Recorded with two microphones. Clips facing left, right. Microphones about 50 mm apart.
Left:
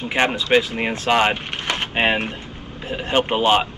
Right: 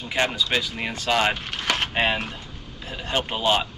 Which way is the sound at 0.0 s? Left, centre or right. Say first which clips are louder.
Left 4 dB; left.